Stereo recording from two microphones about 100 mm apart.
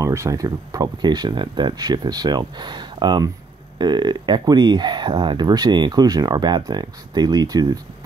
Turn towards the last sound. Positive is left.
turn(degrees=-40)  # may be behind; listen again after turning